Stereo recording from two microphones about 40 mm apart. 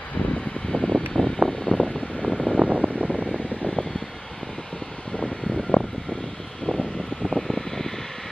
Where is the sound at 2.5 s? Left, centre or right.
Right.